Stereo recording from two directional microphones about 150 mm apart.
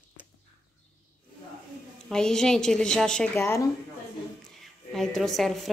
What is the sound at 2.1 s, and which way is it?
A woman's voice, 5° left (ahead or behind).